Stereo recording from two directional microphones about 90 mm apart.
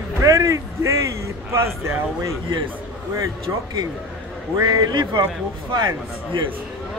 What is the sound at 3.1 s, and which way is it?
Speech, 45° right (ahead or behind).